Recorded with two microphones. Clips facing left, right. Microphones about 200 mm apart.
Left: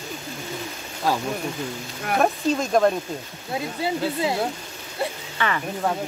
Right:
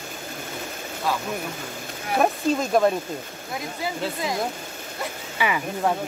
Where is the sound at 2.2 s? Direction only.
5° right (ahead or behind).